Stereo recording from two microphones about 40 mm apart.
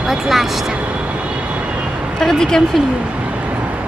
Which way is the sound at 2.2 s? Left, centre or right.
Centre.